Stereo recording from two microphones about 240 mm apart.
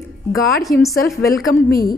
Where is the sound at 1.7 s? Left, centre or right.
Left.